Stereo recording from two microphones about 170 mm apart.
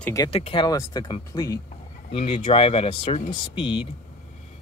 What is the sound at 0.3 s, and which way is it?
Speech, 35° left (ahead or behind).